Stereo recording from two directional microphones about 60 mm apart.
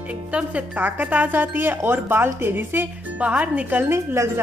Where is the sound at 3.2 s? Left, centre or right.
Right.